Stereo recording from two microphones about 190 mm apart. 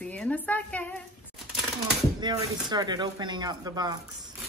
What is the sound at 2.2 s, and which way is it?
Speech, 25° right (ahead or behind).